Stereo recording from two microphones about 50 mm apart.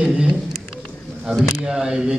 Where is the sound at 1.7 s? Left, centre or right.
Centre.